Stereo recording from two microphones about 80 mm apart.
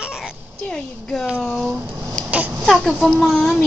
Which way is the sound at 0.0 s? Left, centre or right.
Centre.